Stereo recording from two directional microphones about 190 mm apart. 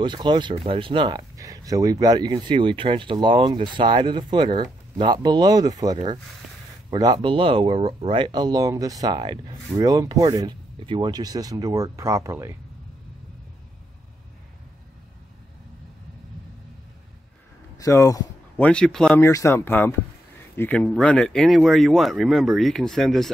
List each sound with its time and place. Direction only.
0.0 s speech: 25° right (ahead or behind)
17.7 s a sound: 15° left (ahead or behind)
18.7 s speech: 5° left (ahead or behind)
19.2 s speech: 15° left (ahead or behind)